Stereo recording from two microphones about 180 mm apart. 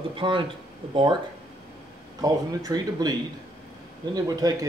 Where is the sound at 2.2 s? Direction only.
20° right (ahead or behind).